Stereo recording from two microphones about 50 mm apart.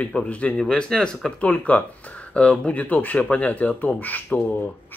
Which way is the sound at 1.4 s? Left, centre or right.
Left.